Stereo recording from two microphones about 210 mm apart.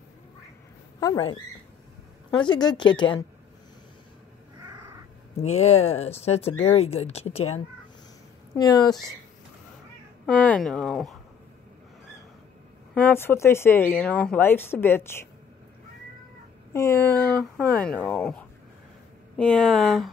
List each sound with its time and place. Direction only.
0.9 s speech: 15° left (ahead or behind)
5.4 s speech: 30° left (ahead or behind)
8.5 s speech: 20° left (ahead or behind)
10.2 s speech: 5° left (ahead or behind)
12.9 s speech: 10° left (ahead or behind)
16.7 s speech: 10° left (ahead or behind)